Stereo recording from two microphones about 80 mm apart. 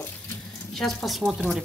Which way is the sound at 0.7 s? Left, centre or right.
Centre.